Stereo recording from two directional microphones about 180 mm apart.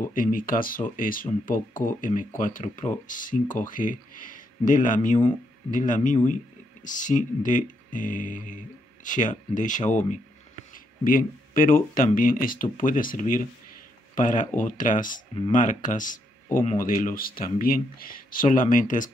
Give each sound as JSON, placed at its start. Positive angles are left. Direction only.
{"t": 0.1, "sound": "speech", "side_deg": 50}